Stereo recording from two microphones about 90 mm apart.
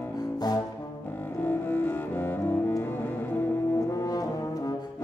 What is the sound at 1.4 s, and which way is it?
Cello, 20° left (ahead or behind).